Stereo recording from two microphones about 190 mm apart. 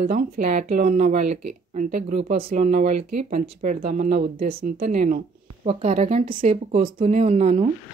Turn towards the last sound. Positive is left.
turn(degrees=-35)  # may be behind; listen again after turning